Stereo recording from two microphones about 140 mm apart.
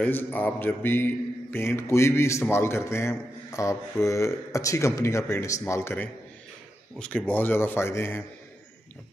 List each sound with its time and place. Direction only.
0.0 s a man's voice: 15° left (ahead or behind)